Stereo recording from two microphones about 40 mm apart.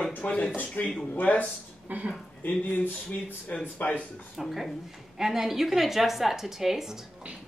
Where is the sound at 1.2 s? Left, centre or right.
Left.